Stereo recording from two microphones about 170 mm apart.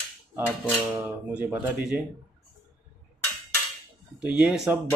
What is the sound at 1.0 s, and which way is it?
Speech, 10° right (ahead or behind).